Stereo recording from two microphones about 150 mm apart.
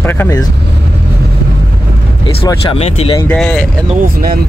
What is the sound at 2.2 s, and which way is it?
Speech, 30° left (ahead or behind).